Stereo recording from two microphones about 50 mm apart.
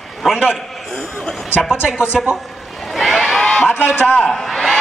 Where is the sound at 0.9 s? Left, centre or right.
Centre.